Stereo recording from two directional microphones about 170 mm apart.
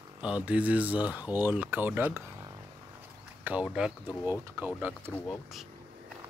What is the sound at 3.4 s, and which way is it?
Speech, 5° right (ahead or behind).